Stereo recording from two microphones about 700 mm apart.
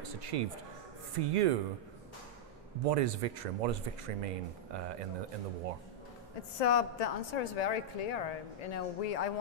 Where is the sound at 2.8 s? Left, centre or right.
Right.